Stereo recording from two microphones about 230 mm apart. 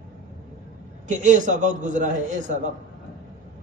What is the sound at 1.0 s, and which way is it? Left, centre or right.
A man's voice, right.